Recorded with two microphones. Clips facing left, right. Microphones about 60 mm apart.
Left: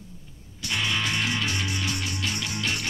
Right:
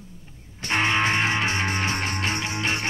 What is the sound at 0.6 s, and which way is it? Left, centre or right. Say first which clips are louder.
Music: right 6 dB; right.